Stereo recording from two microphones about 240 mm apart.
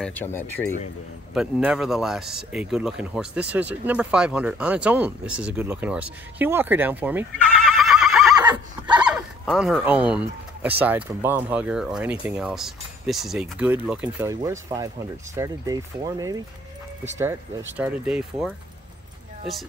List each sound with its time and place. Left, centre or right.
0.0 s speech: centre
1.3 s a man's voice: centre
8.4 s neigh: centre
9.0 s a man's voice: centre